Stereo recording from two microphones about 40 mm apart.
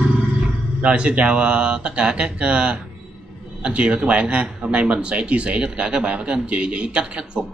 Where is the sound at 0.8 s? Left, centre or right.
Right.